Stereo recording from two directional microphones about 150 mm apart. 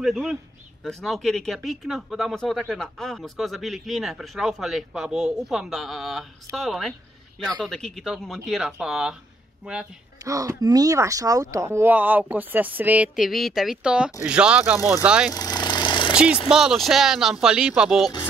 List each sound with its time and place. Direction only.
0.0 s speech: centre (ahead or behind)
10.2 s speech: 20° right (ahead or behind)
15.3 s a sound: 25° left (ahead or behind)
16.4 s speech: 5° right (ahead or behind)